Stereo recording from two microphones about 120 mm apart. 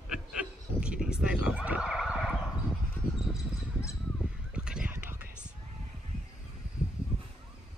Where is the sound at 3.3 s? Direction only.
25° left (ahead or behind).